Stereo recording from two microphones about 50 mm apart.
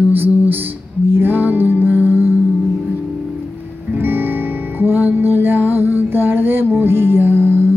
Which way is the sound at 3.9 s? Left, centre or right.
Right.